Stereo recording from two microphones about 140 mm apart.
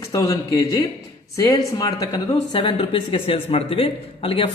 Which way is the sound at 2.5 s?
40° left (ahead or behind).